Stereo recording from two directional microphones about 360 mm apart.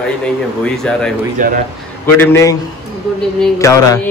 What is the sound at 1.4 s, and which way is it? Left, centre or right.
Speech, right.